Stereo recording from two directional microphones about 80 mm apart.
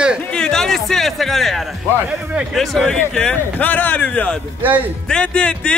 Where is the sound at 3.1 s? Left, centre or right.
Centre.